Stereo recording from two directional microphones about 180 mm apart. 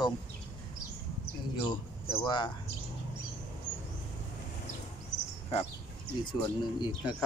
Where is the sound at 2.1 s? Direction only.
20° left (ahead or behind).